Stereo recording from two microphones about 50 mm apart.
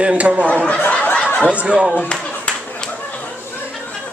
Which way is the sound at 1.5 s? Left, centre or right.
Right.